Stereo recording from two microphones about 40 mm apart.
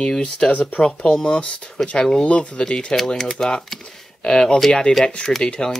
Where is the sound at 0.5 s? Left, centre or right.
Left.